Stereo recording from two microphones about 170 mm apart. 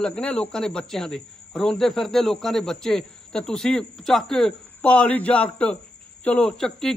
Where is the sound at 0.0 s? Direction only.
5° left (ahead or behind).